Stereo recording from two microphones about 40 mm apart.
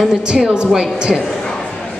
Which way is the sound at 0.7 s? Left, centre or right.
Centre.